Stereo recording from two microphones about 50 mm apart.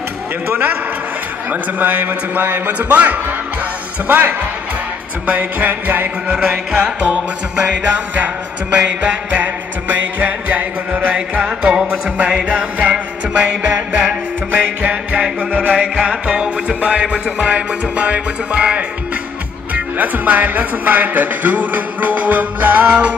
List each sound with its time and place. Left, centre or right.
0.5 s speech: right
7.6 s music: right
9.4 s music: right
19.7 s speech: right